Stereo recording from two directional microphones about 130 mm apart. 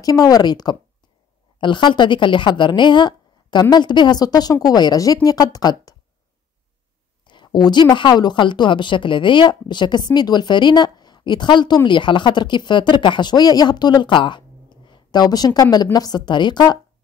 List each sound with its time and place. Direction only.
0.0 s a woman's voice: 30° left (ahead or behind)
7.2 s a woman's voice: 35° left (ahead or behind)